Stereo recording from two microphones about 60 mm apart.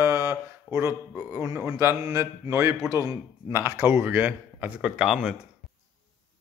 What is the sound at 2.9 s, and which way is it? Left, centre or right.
Speech, right.